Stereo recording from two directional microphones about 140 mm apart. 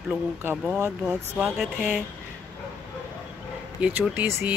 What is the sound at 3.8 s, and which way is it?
Speech, 10° right (ahead or behind).